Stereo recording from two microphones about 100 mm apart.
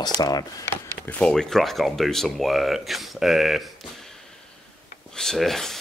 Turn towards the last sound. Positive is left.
turn(degrees=5)  # may be behind; listen again after turning